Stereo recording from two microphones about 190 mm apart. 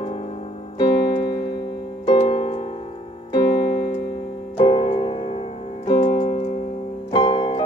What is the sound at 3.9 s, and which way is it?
Keyboard, 50° left (ahead or behind).